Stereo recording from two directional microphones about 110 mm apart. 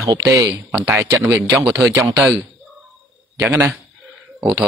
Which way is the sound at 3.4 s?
25° right (ahead or behind).